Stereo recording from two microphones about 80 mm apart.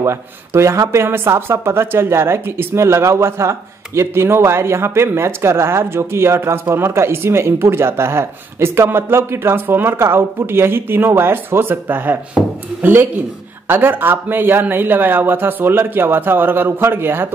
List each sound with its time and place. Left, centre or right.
0.0 s speech: right